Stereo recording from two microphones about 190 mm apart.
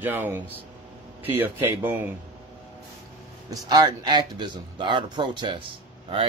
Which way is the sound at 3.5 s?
20° right (ahead or behind).